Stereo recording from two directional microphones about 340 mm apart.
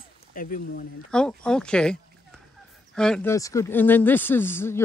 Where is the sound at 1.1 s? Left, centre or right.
Centre.